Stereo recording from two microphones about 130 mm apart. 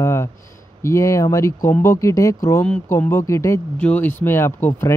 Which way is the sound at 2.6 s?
10° left (ahead or behind).